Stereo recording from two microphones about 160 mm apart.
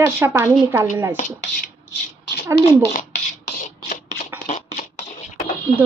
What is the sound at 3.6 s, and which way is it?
Scratch, 50° left (ahead or behind).